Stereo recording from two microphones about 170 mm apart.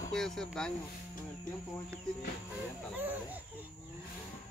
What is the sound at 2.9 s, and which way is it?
Speech, 10° right (ahead or behind).